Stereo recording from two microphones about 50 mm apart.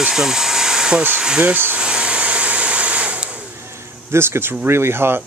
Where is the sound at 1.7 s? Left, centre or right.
Right.